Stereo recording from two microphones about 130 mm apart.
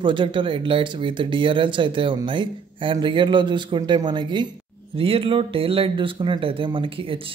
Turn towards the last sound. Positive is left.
turn(degrees=-45)  # may be behind; listen again after turning